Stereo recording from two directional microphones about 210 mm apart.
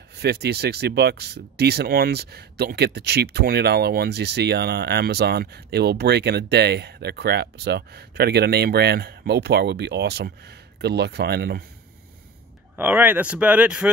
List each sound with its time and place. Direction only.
0.1 s speech: 50° right (ahead or behind)
12.7 s speech: 10° right (ahead or behind)